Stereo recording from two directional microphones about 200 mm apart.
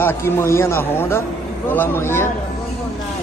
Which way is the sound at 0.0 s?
10° left (ahead or behind).